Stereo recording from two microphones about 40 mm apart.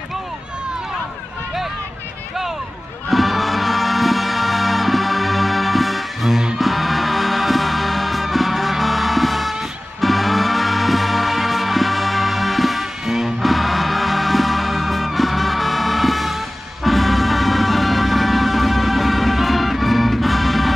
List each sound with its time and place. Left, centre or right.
3.1 s music: centre